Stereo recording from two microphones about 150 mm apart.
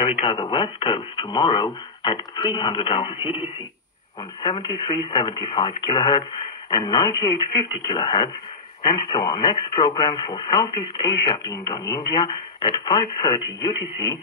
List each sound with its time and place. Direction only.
0.0 s speech: 40° left (ahead or behind)